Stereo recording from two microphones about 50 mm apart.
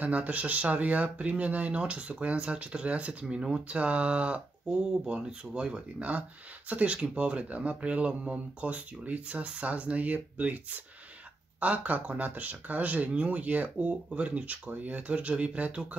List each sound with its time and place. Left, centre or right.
0.0 s speech: right; by 3.6 s centre
3.6 s speech: right
5.0 s speech: centre
5.9 s speech: right
11.6 s speech: right